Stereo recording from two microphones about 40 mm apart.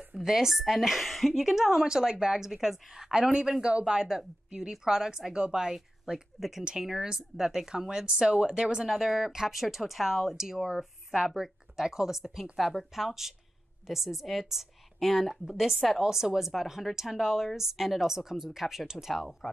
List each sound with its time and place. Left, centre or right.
0.2 s a woman's voice: centre
3.6 s a woman's voice: right
8.8 s a woman's voice: centre